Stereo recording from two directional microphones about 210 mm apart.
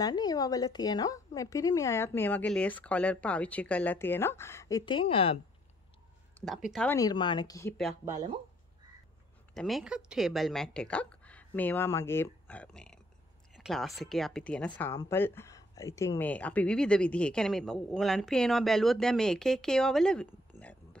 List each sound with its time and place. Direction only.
0.0 s a woman's voice: 20° left (ahead or behind)
6.4 s speech: centre (ahead or behind)
7.0 s a woman's voice: 20° left (ahead or behind)
9.5 s speech: centre (ahead or behind)